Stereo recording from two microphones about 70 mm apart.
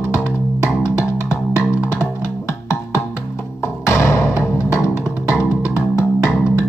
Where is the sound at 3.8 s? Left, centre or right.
Left.